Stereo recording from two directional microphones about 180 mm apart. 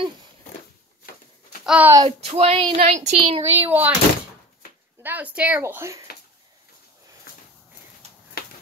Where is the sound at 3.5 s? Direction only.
10° right (ahead or behind).